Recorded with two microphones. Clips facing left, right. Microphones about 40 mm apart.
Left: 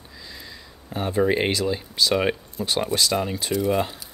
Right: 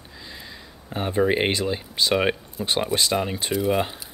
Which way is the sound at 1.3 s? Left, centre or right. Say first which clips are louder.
Even; right.